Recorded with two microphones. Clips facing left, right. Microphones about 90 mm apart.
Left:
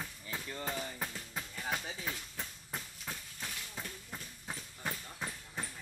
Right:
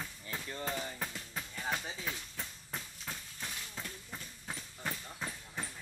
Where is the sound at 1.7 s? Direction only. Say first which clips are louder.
Left 1 dB; 5° left (ahead or behind).